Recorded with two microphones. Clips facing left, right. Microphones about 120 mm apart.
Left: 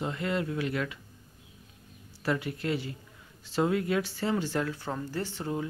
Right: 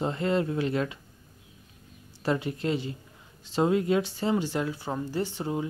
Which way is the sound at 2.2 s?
25° right (ahead or behind).